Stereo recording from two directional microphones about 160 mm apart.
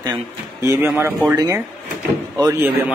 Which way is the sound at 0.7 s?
15° right (ahead or behind).